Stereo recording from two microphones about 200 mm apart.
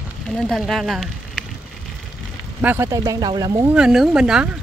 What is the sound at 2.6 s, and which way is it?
Speech, 10° right (ahead or behind).